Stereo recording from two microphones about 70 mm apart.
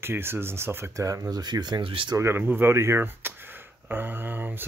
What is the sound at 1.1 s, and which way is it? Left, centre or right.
Speech, right.